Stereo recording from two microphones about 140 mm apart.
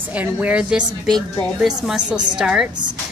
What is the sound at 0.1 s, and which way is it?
A woman's voice, 10° right (ahead or behind).